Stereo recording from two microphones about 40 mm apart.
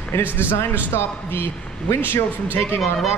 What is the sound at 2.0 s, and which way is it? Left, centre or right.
Speech, left.